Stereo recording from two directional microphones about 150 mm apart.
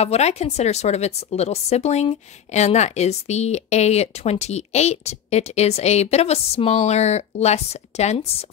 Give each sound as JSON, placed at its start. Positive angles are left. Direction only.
{"t": 0.0, "sound": "speech", "side_deg": 45}